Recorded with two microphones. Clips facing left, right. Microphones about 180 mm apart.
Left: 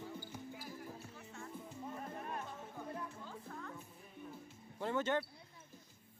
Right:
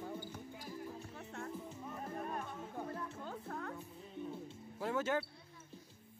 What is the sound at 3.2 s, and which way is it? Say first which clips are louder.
Music: right 5 dB; 55° right (ahead or behind).